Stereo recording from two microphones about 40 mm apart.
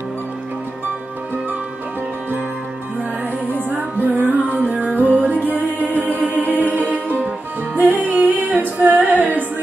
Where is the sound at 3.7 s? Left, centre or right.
Right.